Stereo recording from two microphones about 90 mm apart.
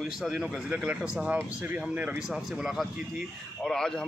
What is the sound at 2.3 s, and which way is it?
Speech, 5° right (ahead or behind).